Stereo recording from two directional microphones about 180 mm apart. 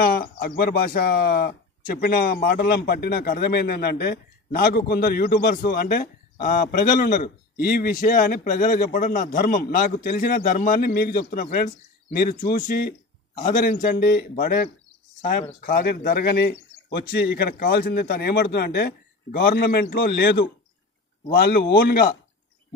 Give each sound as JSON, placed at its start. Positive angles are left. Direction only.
{"t": 0.0, "sound": "speech", "side_deg": 55}